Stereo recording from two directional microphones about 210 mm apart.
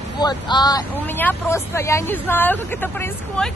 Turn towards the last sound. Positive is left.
turn(degrees=10)  # may be behind; listen again after turning